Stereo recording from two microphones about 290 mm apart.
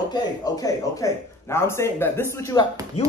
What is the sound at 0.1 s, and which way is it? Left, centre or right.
Speech, centre.